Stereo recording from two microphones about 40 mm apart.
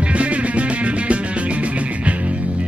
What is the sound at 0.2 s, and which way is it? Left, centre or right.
Music, right.